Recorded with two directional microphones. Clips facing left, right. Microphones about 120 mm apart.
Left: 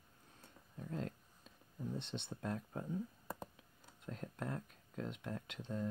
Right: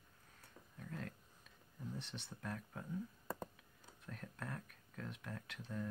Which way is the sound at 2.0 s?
25° left (ahead or behind).